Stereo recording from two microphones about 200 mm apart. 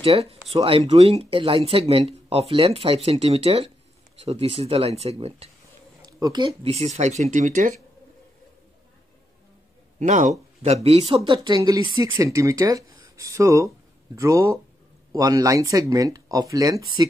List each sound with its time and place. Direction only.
0.0 s speech: 30° right (ahead or behind)
9.9 s speech: 40° right (ahead or behind); by 17.1 s 20° right (ahead or behind)